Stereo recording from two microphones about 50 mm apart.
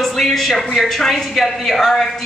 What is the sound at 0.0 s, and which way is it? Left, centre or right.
A man's voice, centre.